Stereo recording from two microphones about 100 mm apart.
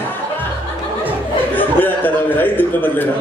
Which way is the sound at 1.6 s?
20° left (ahead or behind).